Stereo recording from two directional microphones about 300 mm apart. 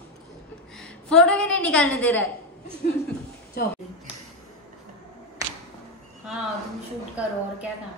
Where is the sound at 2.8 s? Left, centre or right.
Left.